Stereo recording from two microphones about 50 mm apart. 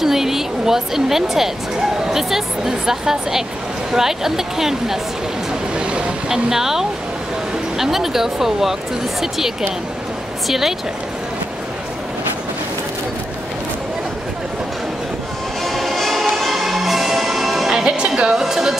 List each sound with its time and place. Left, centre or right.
0.0 s speech: centre
5.8 s vehicle: right
6.2 s speech: centre
15.6 s music: centre
17.8 s speech: centre